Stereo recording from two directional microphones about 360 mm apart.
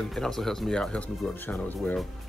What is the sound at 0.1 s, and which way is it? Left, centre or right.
Speech, centre.